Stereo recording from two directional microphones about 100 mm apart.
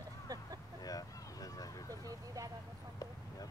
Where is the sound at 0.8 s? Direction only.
35° left (ahead or behind).